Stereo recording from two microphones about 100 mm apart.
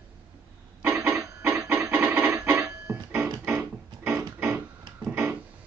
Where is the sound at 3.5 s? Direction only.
20° right (ahead or behind).